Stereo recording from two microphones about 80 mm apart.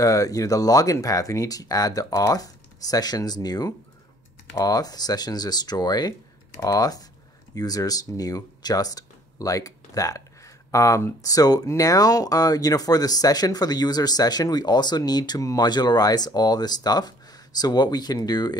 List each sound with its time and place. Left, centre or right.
0.0 s speech: left
11.2 s speech: left